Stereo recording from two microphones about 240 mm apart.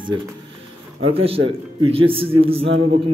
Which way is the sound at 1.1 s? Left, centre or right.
Right.